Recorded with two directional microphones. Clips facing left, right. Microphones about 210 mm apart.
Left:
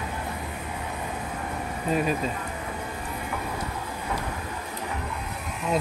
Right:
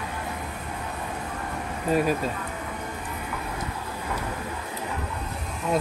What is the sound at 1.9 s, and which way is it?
Speech, 5° right (ahead or behind).